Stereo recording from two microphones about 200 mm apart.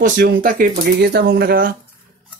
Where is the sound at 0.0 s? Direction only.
45° right (ahead or behind).